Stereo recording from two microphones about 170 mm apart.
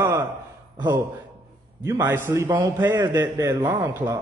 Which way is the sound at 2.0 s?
15° right (ahead or behind).